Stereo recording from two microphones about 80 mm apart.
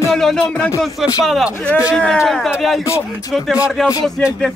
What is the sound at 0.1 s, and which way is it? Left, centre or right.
Music, centre.